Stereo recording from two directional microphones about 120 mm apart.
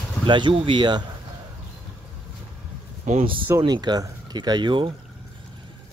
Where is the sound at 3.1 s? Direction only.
90° right.